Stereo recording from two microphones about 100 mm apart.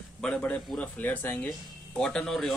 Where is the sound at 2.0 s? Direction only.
5° left (ahead or behind).